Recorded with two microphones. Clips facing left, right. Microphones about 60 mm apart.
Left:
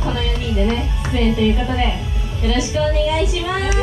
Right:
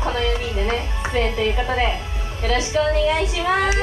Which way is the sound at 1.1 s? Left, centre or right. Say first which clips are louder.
Left 3 dB; right.